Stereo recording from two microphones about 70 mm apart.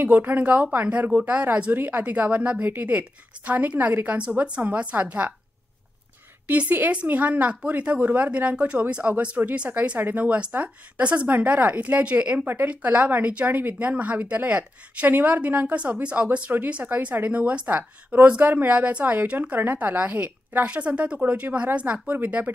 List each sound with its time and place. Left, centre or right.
0.0 s speech: right
6.5 s speech: right